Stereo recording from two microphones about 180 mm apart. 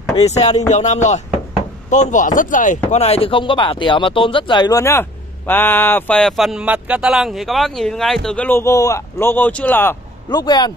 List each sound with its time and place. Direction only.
0.4 s a sound: 40° left (ahead or behind)
1.9 s speech: 40° left (ahead or behind)
2.9 s speech: 35° left (ahead or behind)